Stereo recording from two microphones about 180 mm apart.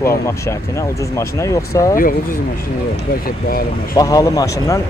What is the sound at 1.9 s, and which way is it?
Speech, 50° left (ahead or behind).